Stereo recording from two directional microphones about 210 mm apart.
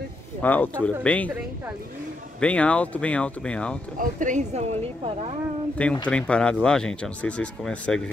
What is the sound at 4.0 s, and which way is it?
Speech, 35° right (ahead or behind).